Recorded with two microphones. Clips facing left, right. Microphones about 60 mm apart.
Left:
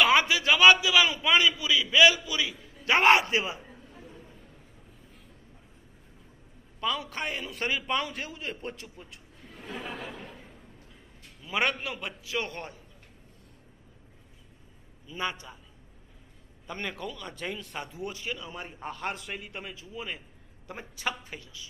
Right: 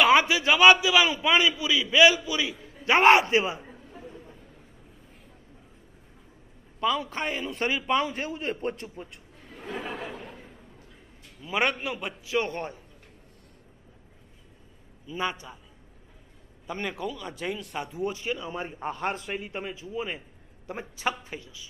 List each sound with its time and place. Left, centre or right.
0.0 s a man's voice: right
7.1 s a man's voice: right
10.0 s a sound: centre
11.4 s a man's voice: centre
15.0 s a man's voice: centre
16.6 s speech: centre
17.8 s a man's voice: right